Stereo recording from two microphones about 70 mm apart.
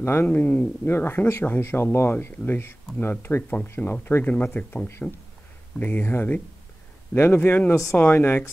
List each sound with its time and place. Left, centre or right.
0.0 s speech: left
0.3 s speech: left